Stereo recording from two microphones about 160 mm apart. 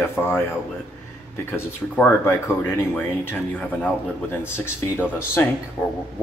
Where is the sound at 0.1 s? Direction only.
15° left (ahead or behind).